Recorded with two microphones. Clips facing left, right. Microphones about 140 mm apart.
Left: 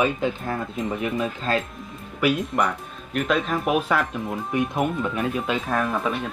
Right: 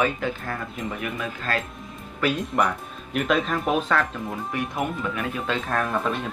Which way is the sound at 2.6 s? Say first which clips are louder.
Even; centre (ahead or behind).